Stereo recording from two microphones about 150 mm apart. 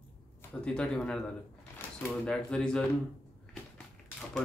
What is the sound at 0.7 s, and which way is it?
Speech, 5° left (ahead or behind).